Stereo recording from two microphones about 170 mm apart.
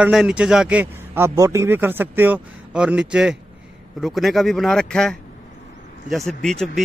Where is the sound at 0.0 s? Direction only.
5° right (ahead or behind).